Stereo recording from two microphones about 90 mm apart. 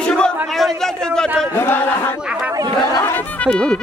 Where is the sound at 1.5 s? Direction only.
25° left (ahead or behind).